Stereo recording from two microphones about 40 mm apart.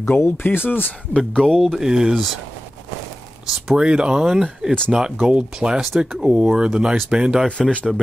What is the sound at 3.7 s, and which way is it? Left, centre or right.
Speech, right.